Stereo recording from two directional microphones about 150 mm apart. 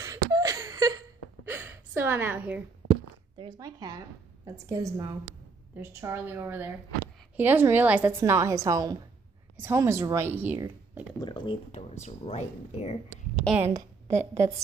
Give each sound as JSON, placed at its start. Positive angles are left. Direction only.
{"t": 0.0, "sound": "gasp", "side_deg": -20}
{"t": 3.3, "sound": "a woman's voice", "side_deg": -30}
{"t": 11.1, "sound": "a sound", "side_deg": 30}
{"t": 11.7, "sound": "speech", "side_deg": 45}
{"t": 13.7, "sound": "a woman's voice", "side_deg": -20}